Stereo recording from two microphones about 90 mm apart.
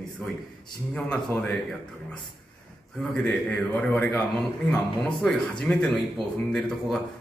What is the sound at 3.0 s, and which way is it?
A man's voice, 10° left (ahead or behind).